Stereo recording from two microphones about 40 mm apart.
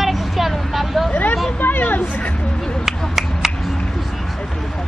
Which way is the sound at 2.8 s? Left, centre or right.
Centre.